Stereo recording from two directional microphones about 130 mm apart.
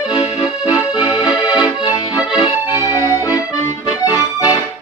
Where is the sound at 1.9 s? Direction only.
30° left (ahead or behind).